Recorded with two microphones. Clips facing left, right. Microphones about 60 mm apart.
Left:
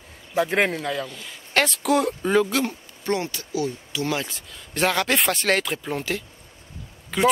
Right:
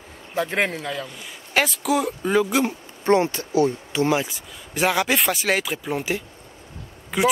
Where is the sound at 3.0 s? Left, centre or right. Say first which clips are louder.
Right 7 dB; right.